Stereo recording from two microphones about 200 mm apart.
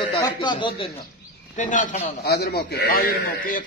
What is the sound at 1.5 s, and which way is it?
A man's voice, 40° left (ahead or behind).